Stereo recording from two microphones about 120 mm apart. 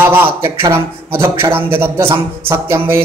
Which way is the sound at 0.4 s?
20° right (ahead or behind).